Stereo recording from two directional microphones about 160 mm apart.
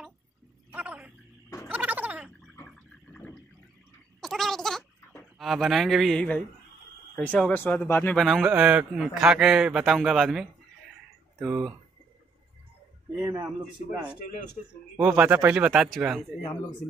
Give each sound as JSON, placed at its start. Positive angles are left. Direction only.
{"t": 0.7, "sound": "gargling", "side_deg": -10}
{"t": 2.5, "sound": "a sound", "side_deg": 10}
{"t": 5.4, "sound": "a man's voice", "side_deg": 0}
{"t": 13.2, "sound": "speech", "side_deg": -15}
{"t": 15.0, "sound": "speech", "side_deg": -10}